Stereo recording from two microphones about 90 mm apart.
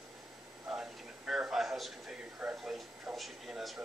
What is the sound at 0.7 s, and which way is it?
Speech, 10° right (ahead or behind).